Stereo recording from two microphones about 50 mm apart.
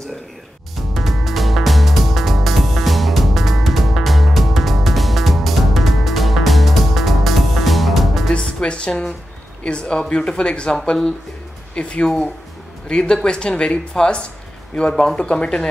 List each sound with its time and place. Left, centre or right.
0.9 s music: centre
8.3 s music: centre
9.6 s speech: left